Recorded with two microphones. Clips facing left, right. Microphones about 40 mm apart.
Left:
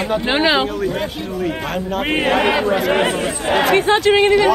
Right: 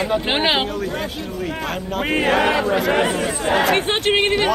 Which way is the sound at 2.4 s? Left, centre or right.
Left.